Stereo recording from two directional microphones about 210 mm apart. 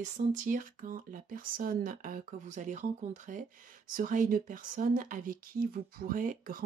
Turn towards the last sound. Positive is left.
turn(degrees=-40)  # may be behind; listen again after turning